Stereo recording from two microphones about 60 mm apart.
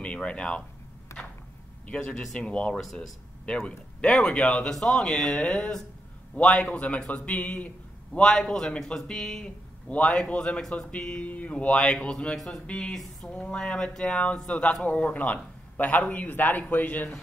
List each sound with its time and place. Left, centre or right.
0.0 s speech: centre
1.1 s a sound: left
1.9 s speech: centre
2.8 s speech: centre
3.4 s speech: centre
8.2 s speech: centre; by 17.1 s left